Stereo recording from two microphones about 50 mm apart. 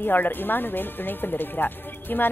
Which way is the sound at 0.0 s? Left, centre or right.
Left.